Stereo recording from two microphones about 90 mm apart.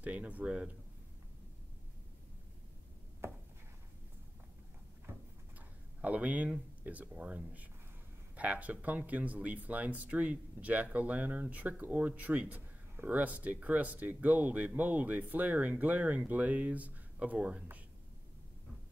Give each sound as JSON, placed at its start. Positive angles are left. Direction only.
{"t": 0.0, "sound": "speech", "side_deg": -15}
{"t": 5.9, "sound": "speech", "side_deg": -15}